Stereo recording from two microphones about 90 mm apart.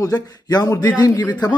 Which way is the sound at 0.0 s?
45° left (ahead or behind).